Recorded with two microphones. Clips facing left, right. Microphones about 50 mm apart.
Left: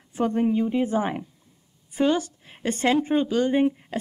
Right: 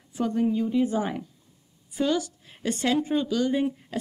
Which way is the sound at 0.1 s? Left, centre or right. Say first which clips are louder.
Left 2 dB; left.